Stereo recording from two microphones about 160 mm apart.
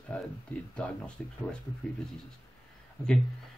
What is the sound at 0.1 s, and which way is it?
Speech, 10° left (ahead or behind).